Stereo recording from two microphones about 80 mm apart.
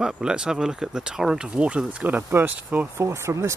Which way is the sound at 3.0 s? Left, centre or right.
Right.